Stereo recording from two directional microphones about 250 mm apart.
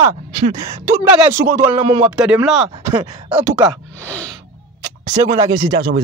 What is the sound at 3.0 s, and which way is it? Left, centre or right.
Speech, centre.